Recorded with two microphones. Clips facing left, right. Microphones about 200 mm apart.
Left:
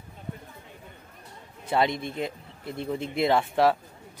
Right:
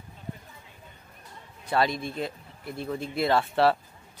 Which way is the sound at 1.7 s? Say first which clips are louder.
Left 1 dB; 20° left (ahead or behind).